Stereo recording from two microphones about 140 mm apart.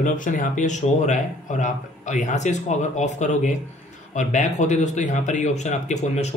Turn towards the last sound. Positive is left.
turn(degrees=50)  # may be behind; listen again after turning